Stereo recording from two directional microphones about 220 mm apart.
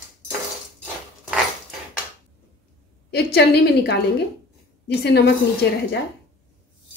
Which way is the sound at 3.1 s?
50° left (ahead or behind).